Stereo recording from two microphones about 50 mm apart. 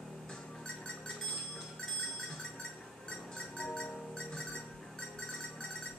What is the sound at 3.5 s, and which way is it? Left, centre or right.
Music, centre.